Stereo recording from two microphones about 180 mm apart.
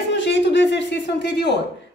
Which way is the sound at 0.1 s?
80° left.